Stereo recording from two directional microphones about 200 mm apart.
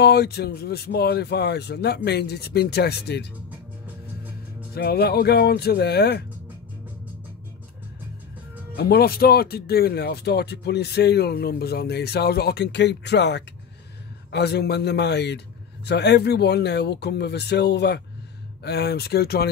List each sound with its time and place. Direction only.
0.0 s a man's voice: 55° left (ahead or behind)
4.7 s speech: 50° left (ahead or behind)
8.7 s a man's voice: 50° left (ahead or behind)